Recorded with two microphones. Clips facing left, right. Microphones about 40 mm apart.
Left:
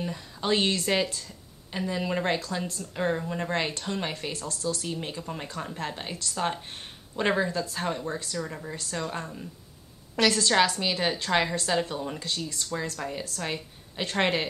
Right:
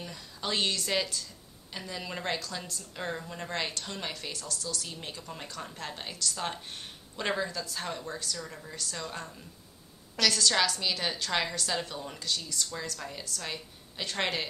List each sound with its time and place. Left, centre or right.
0.0 s a woman's voice: left
4.1 s a woman's voice: left
12.2 s a woman's voice: left